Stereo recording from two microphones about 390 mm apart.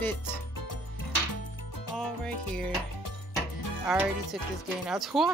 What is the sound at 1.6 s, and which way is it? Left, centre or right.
Music, left.